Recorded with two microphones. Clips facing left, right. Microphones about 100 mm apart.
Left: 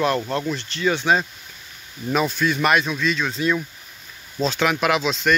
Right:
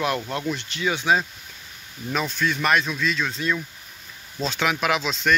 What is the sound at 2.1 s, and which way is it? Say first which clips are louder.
Speech: left 4 dB; 10° left (ahead or behind).